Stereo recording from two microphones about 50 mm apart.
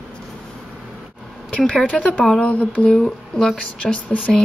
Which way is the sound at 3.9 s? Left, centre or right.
Left.